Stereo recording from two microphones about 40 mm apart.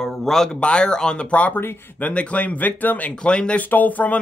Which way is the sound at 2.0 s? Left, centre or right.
Left.